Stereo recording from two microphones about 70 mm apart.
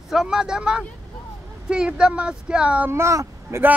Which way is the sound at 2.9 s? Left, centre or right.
Right.